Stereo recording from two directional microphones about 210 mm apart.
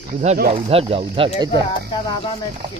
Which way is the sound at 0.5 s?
25° right (ahead or behind).